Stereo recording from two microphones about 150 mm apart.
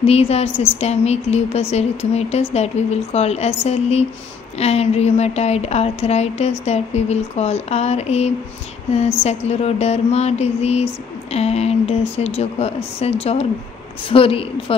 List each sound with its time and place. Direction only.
0.0 s a woman's voice: 45° left (ahead or behind)